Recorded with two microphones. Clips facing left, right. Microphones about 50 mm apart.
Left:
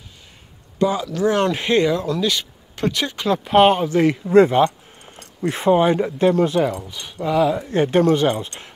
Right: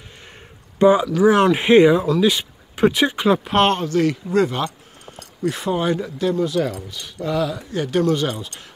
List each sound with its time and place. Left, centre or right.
0.7 s speech: right
1.0 s speech: centre
3.4 s speech: centre; by 6.3 s left
6.6 s speech: centre
7.5 s speech: left